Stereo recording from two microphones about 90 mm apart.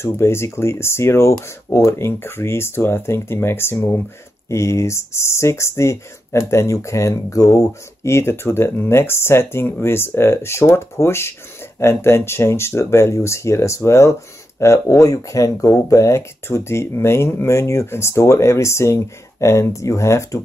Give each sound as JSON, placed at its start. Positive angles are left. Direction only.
{"t": 0.0, "sound": "speech", "side_deg": 30}